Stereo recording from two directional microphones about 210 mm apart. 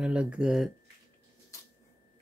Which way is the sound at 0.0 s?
5° right (ahead or behind).